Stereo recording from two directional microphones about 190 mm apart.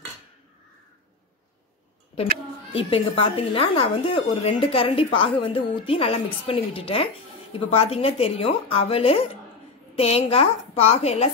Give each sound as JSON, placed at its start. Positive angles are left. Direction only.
{"t": 2.7, "sound": "a woman's voice", "side_deg": 30}